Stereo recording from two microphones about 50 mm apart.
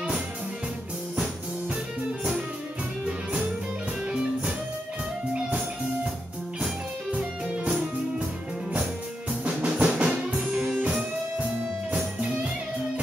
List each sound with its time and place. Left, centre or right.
4.1 s music: centre
7.1 s music: right
9.4 s drum: right
9.8 s music: centre
10.8 s music: right